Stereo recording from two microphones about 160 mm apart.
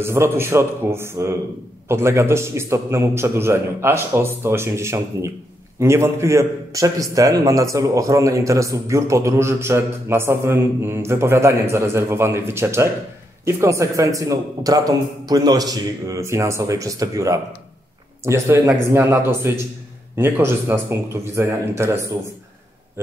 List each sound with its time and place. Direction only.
0.0 s a man's voice: 15° right (ahead or behind)